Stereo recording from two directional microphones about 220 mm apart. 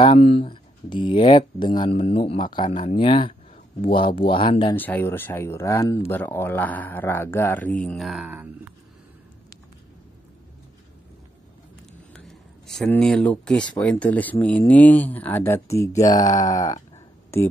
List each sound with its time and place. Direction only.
0.0 s speech: 25° left (ahead or behind)
4.7 s speech: 10° left (ahead or behind)
12.1 s speech: centre (ahead or behind)
16.1 s speech: 35° left (ahead or behind)
17.3 s speech: 10° left (ahead or behind)